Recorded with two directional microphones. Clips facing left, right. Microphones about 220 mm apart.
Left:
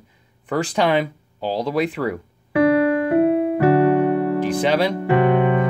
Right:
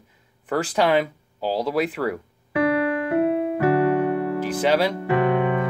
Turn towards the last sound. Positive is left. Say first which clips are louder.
# left 4 dB
turn(degrees=30)  # may be behind; listen again after turning